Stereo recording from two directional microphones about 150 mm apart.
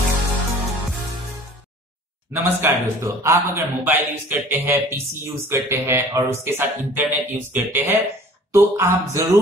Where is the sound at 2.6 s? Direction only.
20° right (ahead or behind).